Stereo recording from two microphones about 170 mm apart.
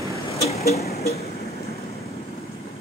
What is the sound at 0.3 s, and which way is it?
Vehicle, 40° left (ahead or behind).